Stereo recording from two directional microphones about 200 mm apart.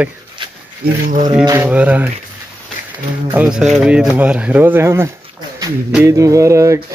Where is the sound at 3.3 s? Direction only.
5° right (ahead or behind).